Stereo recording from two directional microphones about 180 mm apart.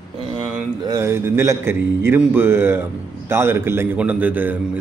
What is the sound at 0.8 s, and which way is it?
Speech, 15° right (ahead or behind).